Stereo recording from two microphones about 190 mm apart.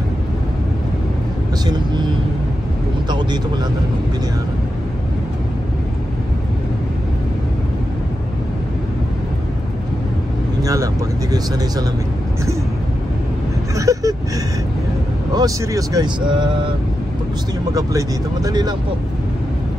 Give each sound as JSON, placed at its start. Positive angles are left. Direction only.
{"t": 1.7, "sound": "vehicle", "side_deg": -25}
{"t": 10.6, "sound": "vehicle", "side_deg": -15}
{"t": 13.7, "sound": "a sound", "side_deg": -15}
{"t": 15.3, "sound": "speech", "side_deg": -20}
{"t": 17.7, "sound": "speech", "side_deg": -20}